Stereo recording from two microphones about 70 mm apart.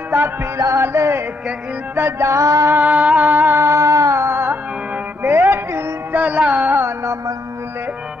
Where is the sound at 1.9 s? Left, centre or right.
Right.